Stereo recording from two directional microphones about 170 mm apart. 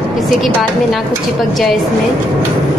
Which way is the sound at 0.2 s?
Centre (ahead or behind).